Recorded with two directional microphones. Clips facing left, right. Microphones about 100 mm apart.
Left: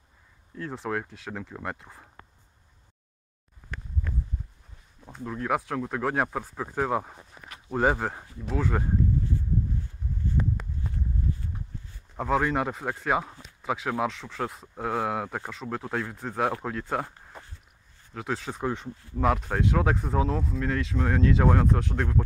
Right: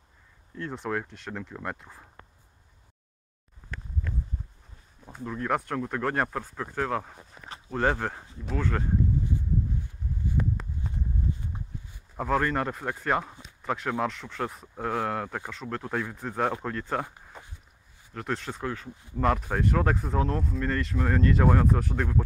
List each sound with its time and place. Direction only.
0.6 s speech: centre (ahead or behind)
5.0 s speech: centre (ahead or behind)
9.7 s a sound: 15° right (ahead or behind)
12.2 s speech: 5° left (ahead or behind)
18.1 s speech: 5° left (ahead or behind)
18.6 s speech: 20° left (ahead or behind)
18.9 s speech: 20° right (ahead or behind)
19.1 s speech: centre (ahead or behind)